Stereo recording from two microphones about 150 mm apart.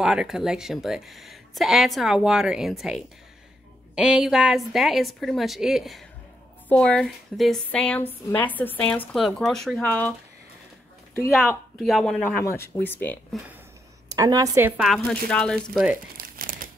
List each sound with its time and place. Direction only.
0.0 s a woman's voice: 5° right (ahead or behind)
11.3 s speech: centre (ahead or behind)
12.4 s a woman's voice: 15° left (ahead or behind)
14.1 s a woman's voice: 25° right (ahead or behind)
14.8 s speech: centre (ahead or behind)
16.2 s crumpling: 70° right (ahead or behind)